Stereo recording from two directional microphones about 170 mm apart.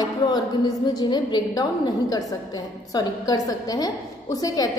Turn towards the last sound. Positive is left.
turn(degrees=20)  # may be behind; listen again after turning